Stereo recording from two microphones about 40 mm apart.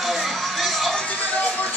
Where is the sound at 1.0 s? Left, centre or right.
Left.